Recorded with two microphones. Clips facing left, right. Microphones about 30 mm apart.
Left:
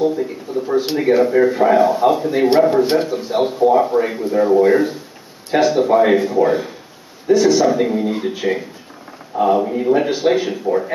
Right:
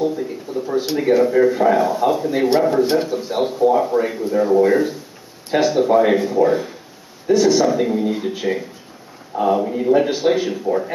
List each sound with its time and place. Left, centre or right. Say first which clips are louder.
0.0 s speech: left 3 dB; centre